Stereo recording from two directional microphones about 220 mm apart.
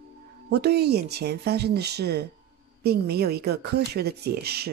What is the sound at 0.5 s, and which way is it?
Speech, 50° right (ahead or behind).